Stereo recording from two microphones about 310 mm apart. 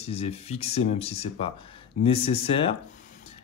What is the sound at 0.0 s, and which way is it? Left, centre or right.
Speech, centre.